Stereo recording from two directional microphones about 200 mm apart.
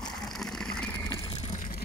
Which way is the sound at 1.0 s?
20° left (ahead or behind).